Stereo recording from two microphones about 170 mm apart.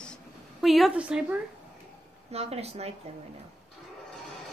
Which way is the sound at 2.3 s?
35° right (ahead or behind).